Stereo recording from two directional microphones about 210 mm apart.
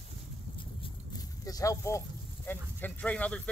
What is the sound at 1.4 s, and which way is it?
Speech, 15° left (ahead or behind).